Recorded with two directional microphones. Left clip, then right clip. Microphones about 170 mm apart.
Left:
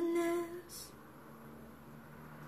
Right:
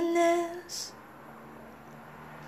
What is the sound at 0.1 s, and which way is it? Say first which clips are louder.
Music: right 10 dB; 15° left (ahead or behind).